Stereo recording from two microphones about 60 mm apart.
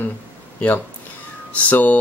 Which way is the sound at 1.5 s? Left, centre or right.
Left.